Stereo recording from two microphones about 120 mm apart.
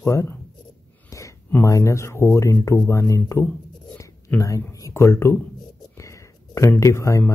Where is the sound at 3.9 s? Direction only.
25° left (ahead or behind).